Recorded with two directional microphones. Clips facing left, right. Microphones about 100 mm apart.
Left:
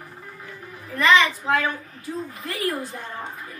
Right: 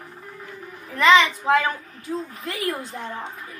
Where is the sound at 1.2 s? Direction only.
20° right (ahead or behind).